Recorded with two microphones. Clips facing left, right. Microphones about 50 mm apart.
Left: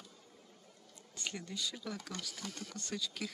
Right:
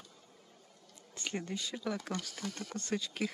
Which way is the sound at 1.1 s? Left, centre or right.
Right.